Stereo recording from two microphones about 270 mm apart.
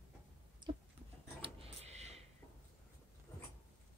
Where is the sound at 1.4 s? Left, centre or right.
Right.